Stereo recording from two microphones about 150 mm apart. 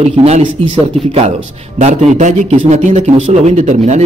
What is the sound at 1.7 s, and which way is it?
Speech, 50° right (ahead or behind).